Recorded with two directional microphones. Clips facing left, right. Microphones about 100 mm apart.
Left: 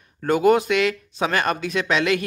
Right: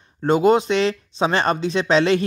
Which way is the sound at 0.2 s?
25° right (ahead or behind).